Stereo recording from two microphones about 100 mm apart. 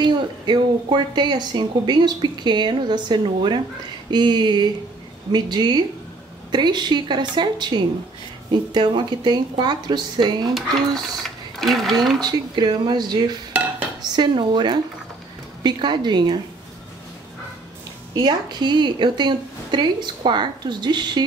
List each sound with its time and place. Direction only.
0.0 s speech: 50° right (ahead or behind)
10.5 s speech: centre (ahead or behind)
12.2 s speech: 45° right (ahead or behind)
18.2 s speech: 50° right (ahead or behind)